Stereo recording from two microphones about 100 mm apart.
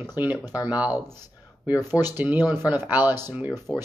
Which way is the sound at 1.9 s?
20° right (ahead or behind).